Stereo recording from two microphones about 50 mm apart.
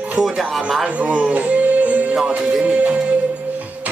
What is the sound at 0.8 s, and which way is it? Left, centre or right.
Music, right.